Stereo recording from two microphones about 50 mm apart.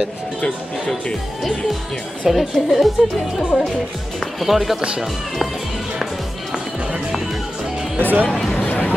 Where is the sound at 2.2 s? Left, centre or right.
Centre.